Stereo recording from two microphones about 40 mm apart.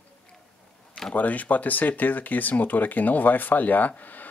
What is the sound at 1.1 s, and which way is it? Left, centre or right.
Speech, left.